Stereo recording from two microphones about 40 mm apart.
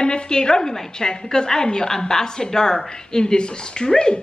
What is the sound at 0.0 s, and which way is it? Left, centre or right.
A woman's voice, left.